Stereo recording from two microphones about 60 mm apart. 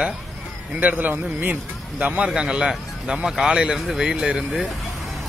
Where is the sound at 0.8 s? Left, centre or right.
Right.